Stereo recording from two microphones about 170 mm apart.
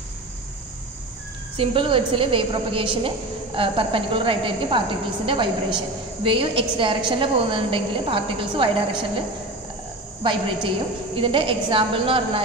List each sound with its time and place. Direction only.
1.6 s a woman's voice: 30° right (ahead or behind)
11.1 s a woman's voice: 30° right (ahead or behind)